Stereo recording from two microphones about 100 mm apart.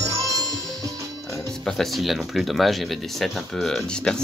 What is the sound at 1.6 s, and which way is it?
Speech, 5° left (ahead or behind).